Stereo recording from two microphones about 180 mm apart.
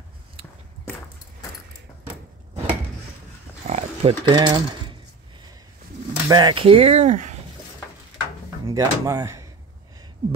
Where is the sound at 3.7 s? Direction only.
35° right (ahead or behind).